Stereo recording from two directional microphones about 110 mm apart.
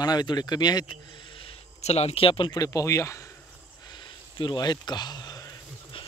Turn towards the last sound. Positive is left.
turn(degrees=35)  # may be behind; listen again after turning